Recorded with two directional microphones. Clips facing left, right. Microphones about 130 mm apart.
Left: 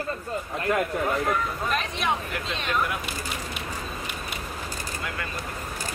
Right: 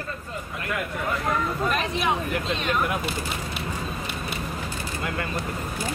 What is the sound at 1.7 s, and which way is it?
Speech, centre (ahead or behind).